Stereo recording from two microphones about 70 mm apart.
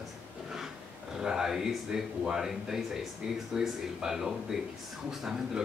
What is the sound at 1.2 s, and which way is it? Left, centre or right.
Speech, centre.